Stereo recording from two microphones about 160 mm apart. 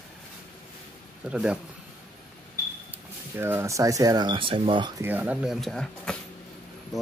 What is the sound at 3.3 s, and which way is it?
Speech, 15° right (ahead or behind).